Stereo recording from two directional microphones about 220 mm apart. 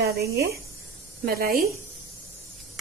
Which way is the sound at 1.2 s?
40° right (ahead or behind).